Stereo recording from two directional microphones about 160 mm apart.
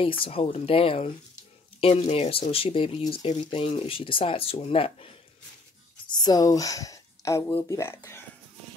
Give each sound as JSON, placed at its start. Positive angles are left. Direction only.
{"t": 0.0, "sound": "speech", "side_deg": 35}
{"t": 6.0, "sound": "speech", "side_deg": 25}